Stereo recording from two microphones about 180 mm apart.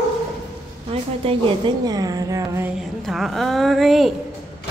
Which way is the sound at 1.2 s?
30° right (ahead or behind).